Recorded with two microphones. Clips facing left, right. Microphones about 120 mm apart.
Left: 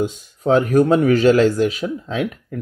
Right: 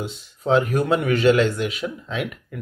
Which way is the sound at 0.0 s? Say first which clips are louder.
Left 7 dB; 40° left (ahead or behind).